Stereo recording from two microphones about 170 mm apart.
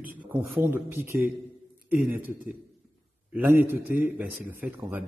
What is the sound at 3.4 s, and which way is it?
A man's voice, 10° right (ahead or behind).